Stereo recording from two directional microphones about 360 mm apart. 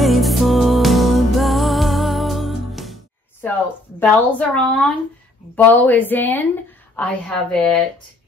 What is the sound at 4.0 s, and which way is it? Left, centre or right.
A woman's voice, centre.